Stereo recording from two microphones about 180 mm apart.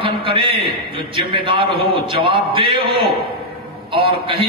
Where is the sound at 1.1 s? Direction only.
30° right (ahead or behind).